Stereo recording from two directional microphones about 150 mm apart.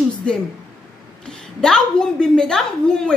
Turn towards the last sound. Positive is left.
turn(degrees=5)  # may be behind; listen again after turning